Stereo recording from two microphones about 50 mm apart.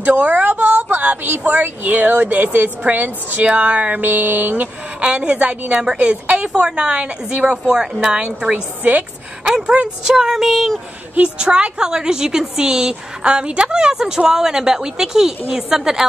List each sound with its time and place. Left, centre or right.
0.0 s a sound: right
1.6 s a woman's voice: right
5.0 s a woman's voice: right
5.7 s a woman's voice: centre
8.8 s a woman's voice: right
9.5 s a woman's voice: centre
10.3 s speech: centre
11.1 s a woman's voice: right